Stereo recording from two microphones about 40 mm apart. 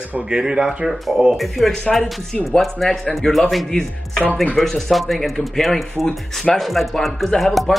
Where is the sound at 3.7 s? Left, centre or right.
Centre.